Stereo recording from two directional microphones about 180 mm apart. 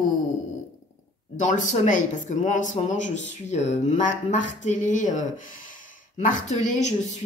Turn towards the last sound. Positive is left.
turn(degrees=40)  # may be behind; listen again after turning